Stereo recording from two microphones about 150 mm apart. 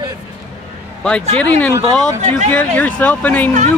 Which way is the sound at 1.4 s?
5° left (ahead or behind).